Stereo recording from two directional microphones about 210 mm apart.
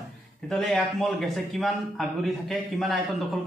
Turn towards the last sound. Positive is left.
turn(degrees=0)  # may be behind; listen again after turning